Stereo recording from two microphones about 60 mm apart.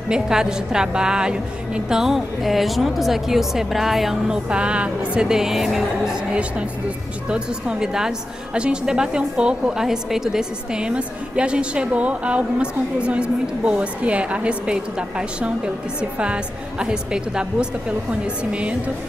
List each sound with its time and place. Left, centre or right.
0.1 s a woman's voice: centre
5.3 s a woman's voice: centre
7.2 s a woman's voice: centre